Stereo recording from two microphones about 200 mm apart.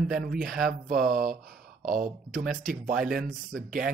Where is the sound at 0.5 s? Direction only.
Centre (ahead or behind).